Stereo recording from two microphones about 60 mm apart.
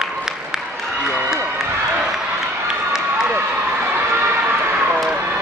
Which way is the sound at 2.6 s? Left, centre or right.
Centre.